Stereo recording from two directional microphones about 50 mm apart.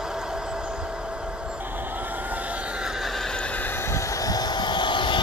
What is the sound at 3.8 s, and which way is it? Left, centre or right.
Vehicle, left.